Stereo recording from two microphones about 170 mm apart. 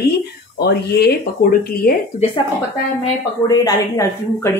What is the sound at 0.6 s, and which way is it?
Speech, 70° left (ahead or behind).